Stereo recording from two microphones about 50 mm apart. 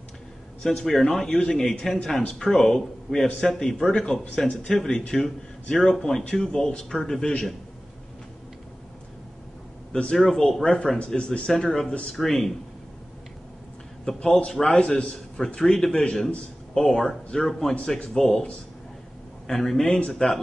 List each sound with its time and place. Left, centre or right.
0.8 s speech: centre
10.1 s speech: centre
14.2 s speech: centre
15.4 s speech: centre